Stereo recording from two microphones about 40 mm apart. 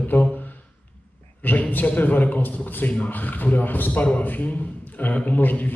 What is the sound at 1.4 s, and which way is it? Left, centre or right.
A man's voice, left.